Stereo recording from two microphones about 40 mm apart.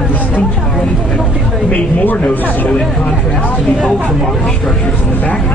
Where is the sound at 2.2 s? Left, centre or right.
Left.